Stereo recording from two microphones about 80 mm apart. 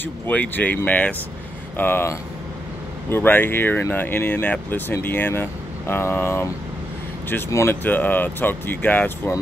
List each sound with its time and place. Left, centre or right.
0.0 s speech: centre
7.8 s speech: left